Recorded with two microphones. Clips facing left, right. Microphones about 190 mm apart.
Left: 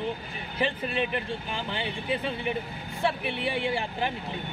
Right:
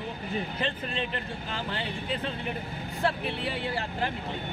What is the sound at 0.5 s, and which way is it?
Speech, 15° left (ahead or behind).